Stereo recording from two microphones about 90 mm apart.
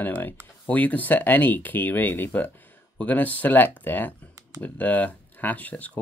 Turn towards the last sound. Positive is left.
turn(degrees=15)  # may be behind; listen again after turning